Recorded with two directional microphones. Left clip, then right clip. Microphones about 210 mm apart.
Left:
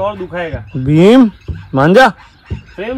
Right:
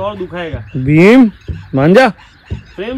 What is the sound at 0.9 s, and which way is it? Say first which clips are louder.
Speech: right 1 dB; 70° left (ahead or behind).